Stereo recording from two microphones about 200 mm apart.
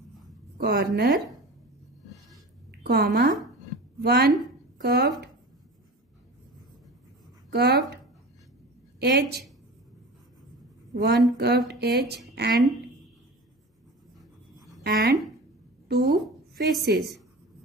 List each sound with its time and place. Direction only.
0.6 s speech: 50° right (ahead or behind)
2.7 s a woman's voice: 55° right (ahead or behind)
7.5 s speech: 55° right (ahead or behind)
11.0 s a woman's voice: 55° right (ahead or behind)
14.8 s a woman's voice: 50° right (ahead or behind)